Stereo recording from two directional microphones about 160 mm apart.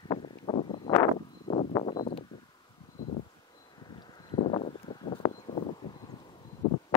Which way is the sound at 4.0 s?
30° left (ahead or behind).